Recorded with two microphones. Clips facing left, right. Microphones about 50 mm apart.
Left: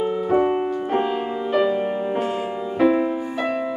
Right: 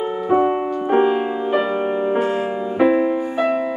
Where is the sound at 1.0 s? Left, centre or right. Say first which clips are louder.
Right 5 dB; centre.